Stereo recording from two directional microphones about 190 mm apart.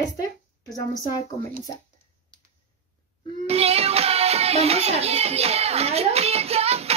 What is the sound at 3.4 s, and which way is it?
Music, 35° right (ahead or behind).